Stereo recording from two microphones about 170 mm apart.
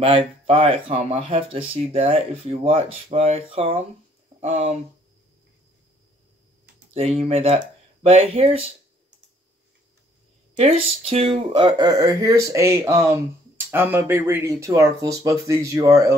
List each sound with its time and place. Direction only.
0.0 s speech: 30° right (ahead or behind)
6.9 s speech: 35° right (ahead or behind)
10.5 s speech: 35° right (ahead or behind); by 16.2 s 20° right (ahead or behind)